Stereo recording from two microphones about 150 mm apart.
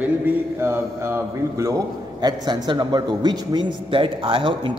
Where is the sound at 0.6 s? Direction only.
15° right (ahead or behind).